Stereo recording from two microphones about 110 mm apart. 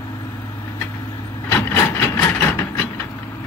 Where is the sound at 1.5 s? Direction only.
25° left (ahead or behind).